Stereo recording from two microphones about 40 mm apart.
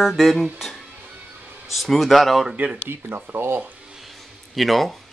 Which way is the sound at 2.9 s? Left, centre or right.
Right.